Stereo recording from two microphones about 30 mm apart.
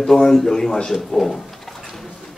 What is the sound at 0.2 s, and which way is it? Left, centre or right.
A man's voice, centre.